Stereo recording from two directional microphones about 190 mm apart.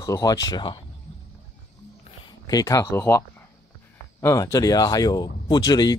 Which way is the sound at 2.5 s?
20° left (ahead or behind).